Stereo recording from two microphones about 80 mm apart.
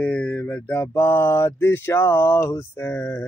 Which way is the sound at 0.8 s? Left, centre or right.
Left.